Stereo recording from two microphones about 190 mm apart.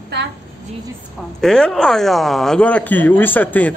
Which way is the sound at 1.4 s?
5° left (ahead or behind).